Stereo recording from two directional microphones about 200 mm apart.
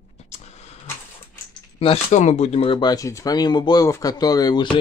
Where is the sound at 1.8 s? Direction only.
30° left (ahead or behind).